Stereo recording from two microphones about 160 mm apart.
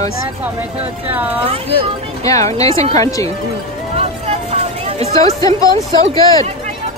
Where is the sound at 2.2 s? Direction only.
20° left (ahead or behind).